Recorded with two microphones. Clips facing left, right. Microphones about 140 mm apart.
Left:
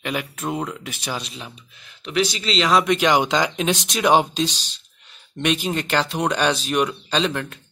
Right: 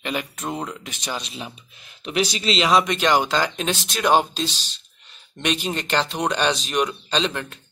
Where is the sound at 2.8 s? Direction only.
10° left (ahead or behind).